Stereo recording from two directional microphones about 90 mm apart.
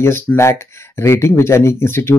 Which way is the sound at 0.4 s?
30° left (ahead or behind).